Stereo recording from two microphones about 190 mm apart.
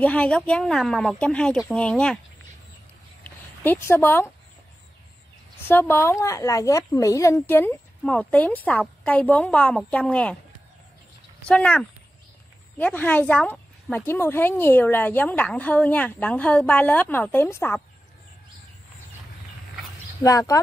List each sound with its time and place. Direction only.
0.0 s speech: 5° left (ahead or behind)
3.3 s speech: 10° left (ahead or behind)
5.7 s speech: 10° left (ahead or behind)
11.4 s speech: 5° left (ahead or behind)
20.2 s speech: 20° left (ahead or behind)